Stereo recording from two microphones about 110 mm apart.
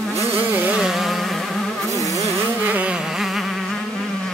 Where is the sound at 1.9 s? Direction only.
30° left (ahead or behind).